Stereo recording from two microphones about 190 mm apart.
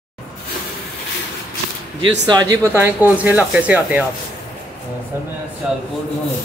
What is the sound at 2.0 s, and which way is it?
Speech, 20° right (ahead or behind).